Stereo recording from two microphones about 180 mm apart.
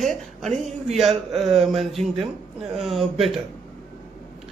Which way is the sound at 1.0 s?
Centre (ahead or behind).